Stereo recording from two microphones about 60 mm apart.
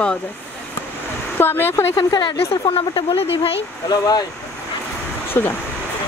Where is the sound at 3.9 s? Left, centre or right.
Left.